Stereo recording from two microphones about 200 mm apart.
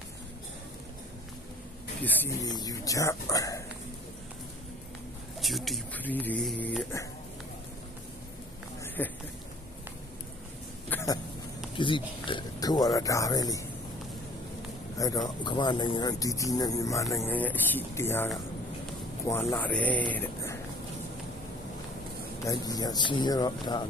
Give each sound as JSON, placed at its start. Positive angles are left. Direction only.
{"t": 2.0, "sound": "speech", "side_deg": 10}
{"t": 5.4, "sound": "speech", "side_deg": 0}
{"t": 9.0, "sound": "speech", "side_deg": 10}
{"t": 10.9, "sound": "a sound", "side_deg": 10}
{"t": 11.7, "sound": "speech", "side_deg": 25}
{"t": 15.0, "sound": "speech", "side_deg": 20}
{"t": 20.1, "sound": "a sound", "side_deg": 10}
{"t": 22.4, "sound": "speech", "side_deg": 15}